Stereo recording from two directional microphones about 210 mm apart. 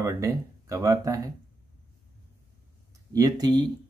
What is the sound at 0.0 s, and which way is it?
Speech, 15° right (ahead or behind).